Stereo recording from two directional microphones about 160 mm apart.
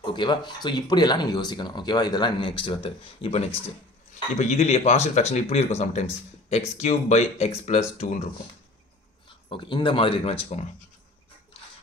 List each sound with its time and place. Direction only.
0.1 s speech: 30° left (ahead or behind); by 8.3 s 45° left (ahead or behind)
9.5 s speech: 30° left (ahead or behind)